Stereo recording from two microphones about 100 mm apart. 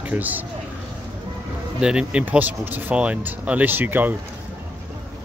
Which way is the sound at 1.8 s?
10° right (ahead or behind).